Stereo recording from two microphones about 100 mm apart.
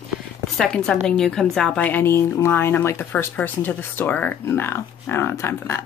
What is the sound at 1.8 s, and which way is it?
Speech, 20° left (ahead or behind).